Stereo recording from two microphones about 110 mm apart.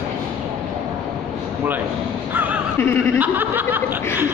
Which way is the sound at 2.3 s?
15° right (ahead or behind).